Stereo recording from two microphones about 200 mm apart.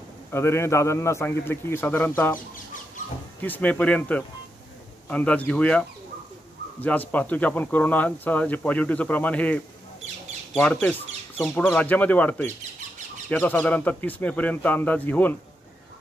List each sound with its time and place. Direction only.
0.3 s speech: 15° left (ahead or behind)
2.3 s chicken: 40° left (ahead or behind)
3.3 s speech: 10° left (ahead or behind)